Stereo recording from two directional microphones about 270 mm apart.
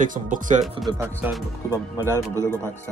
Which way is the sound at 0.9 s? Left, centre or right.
Centre.